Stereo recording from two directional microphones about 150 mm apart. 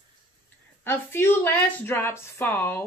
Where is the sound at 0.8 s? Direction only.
15° left (ahead or behind).